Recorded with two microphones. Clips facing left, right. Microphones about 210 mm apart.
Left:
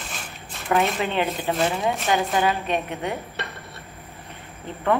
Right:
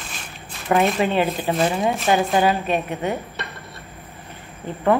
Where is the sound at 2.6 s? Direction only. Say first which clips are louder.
Right 3 dB; 5° right (ahead or behind).